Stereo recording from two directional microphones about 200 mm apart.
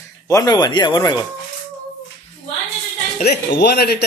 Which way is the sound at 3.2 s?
55° left (ahead or behind).